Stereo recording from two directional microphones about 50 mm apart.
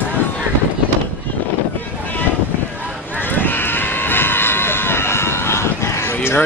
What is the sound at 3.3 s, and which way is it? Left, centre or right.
Run, left.